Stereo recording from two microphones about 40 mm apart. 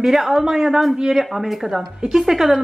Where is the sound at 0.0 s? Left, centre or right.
Centre.